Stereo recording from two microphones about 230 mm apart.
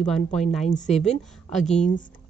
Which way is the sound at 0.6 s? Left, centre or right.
Left.